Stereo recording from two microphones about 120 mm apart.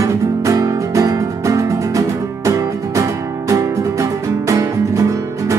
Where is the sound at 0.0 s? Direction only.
30° right (ahead or behind).